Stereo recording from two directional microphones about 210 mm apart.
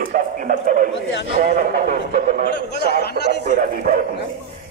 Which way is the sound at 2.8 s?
50° left (ahead or behind).